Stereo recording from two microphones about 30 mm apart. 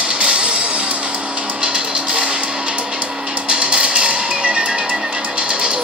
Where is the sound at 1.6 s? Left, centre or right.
Right.